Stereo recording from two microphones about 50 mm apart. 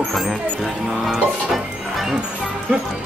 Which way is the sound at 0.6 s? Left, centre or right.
Centre.